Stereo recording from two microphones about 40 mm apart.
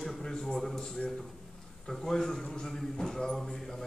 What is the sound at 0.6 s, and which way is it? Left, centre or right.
Speech, centre.